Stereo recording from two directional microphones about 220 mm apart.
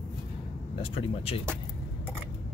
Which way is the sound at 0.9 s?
25° left (ahead or behind).